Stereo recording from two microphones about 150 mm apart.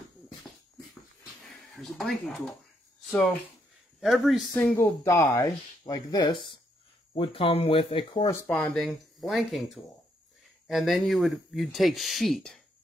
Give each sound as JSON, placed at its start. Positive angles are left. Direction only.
{"t": 1.4, "sound": "speech", "side_deg": 5}
{"t": 4.0, "sound": "speech", "side_deg": 0}
{"t": 4.6, "sound": "speech", "side_deg": 10}
{"t": 8.5, "sound": "speech", "side_deg": 5}
{"t": 10.7, "sound": "speech", "side_deg": 0}